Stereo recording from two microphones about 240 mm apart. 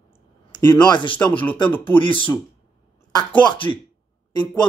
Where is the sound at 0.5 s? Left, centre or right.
Centre.